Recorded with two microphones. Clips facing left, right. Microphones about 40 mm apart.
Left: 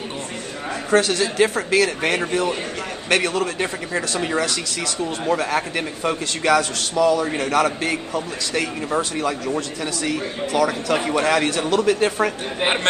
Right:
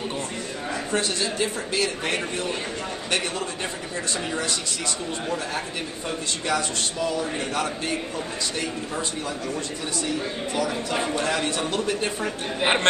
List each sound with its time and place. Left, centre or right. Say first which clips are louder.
0.9 s a man's voice: left 9 dB; left
3.1 s a man's voice: left 8 dB; left
11.1 s a man's voice: left 6 dB; left